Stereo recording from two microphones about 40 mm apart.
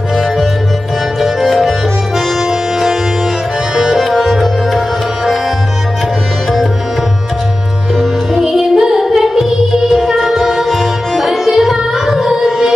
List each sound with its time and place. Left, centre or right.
1.4 s music: centre
2.1 s music: centre
3.7 s tabla: centre
4.0 s tabla: centre
7.9 s music: centre
8.7 s singing: centre
9.9 s music: centre